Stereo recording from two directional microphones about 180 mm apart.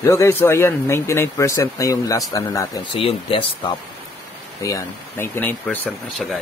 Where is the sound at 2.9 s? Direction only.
30° left (ahead or behind).